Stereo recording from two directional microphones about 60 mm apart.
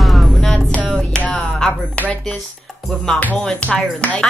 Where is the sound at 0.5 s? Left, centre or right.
Centre.